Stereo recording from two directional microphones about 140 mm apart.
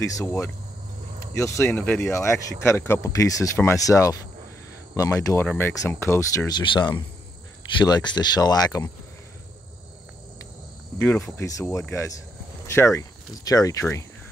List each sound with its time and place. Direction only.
0.0 s speech: 20° left (ahead or behind)
11.3 s speech: 20° left (ahead or behind)